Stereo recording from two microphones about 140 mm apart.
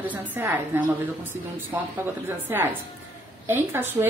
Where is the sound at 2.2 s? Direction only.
15° right (ahead or behind).